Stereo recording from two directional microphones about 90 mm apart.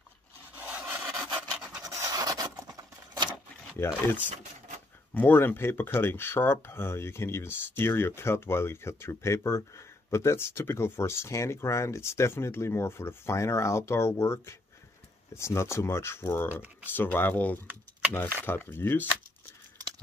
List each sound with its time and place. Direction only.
0.6 s rub: 15° right (ahead or behind)
1.8 s a sound: 40° right (ahead or behind)
3.7 s speech: 20° left (ahead or behind)